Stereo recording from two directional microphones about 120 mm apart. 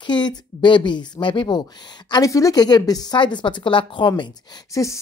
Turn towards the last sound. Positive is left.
turn(degrees=25)  # may be behind; listen again after turning